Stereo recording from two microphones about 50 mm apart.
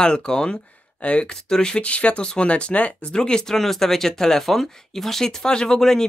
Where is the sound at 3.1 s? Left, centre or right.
Centre.